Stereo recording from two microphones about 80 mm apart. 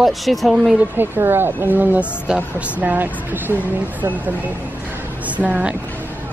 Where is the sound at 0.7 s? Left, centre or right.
Right.